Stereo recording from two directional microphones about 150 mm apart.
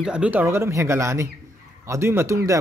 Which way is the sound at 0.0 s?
5° right (ahead or behind).